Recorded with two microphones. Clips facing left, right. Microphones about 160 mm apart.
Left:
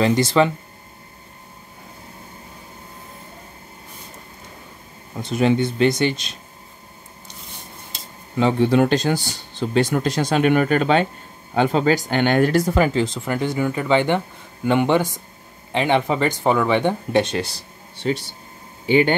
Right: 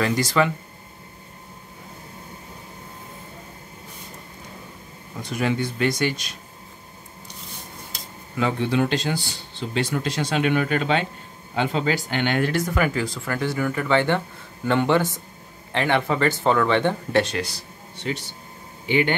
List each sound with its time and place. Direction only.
0.0 s speech: 25° left (ahead or behind)
5.2 s speech: 25° left (ahead or behind)
7.9 s cutlery: 30° left (ahead or behind)
8.6 s speech: 45° left (ahead or behind); by 17.5 s 20° left (ahead or behind)
17.9 s speech: 35° left (ahead or behind)